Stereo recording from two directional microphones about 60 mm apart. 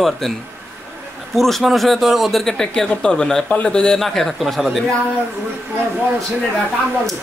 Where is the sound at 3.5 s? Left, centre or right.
Left.